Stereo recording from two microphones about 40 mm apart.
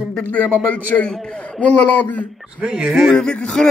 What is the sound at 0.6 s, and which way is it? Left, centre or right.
Speech, left.